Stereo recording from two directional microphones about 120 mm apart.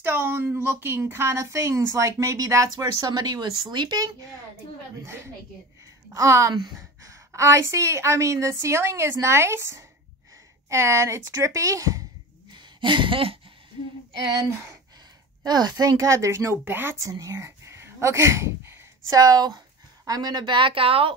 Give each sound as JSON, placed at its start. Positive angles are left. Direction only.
{"t": 0.0, "sound": "a woman's voice", "side_deg": -20}
{"t": 5.0, "sound": "a woman's voice", "side_deg": -20}
{"t": 12.4, "sound": "a sound", "side_deg": -40}
{"t": 15.4, "sound": "a woman's voice", "side_deg": -35}